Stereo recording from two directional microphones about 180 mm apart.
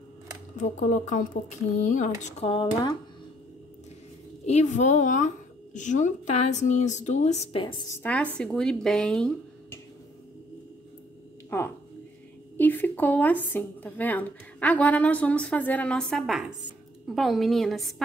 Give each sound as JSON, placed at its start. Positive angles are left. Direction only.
{"t": 0.6, "sound": "speech", "side_deg": 45}
{"t": 2.2, "sound": "speech", "side_deg": 30}
{"t": 4.5, "sound": "a woman's voice", "side_deg": 40}
{"t": 8.0, "sound": "speech", "side_deg": 5}
{"t": 11.5, "sound": "speech", "side_deg": 10}